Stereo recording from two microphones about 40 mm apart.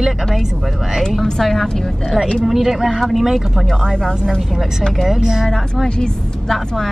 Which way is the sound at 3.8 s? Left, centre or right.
Centre.